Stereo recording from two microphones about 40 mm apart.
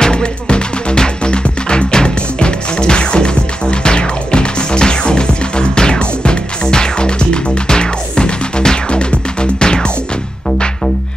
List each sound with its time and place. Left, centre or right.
0.0 s music: left